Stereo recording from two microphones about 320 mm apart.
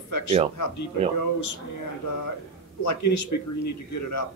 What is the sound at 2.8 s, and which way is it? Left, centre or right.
Speech, left.